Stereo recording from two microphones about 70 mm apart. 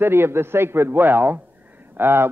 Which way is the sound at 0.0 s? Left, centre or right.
Right.